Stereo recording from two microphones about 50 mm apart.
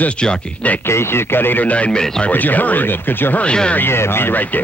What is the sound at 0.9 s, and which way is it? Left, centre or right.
Speech, left.